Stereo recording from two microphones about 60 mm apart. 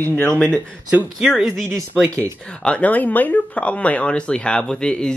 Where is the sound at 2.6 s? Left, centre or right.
Left.